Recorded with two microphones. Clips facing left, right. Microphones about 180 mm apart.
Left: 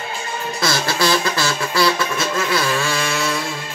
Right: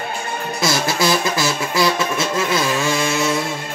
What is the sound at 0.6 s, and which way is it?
Music, 20° right (ahead or behind).